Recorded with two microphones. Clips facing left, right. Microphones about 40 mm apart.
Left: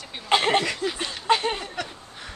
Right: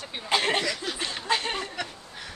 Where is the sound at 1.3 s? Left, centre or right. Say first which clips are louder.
Left 6 dB; left.